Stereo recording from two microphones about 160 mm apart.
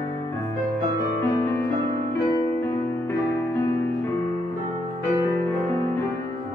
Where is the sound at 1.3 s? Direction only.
15° left (ahead or behind).